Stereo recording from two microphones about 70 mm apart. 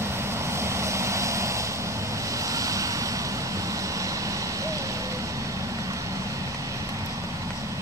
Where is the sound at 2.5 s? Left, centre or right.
Right.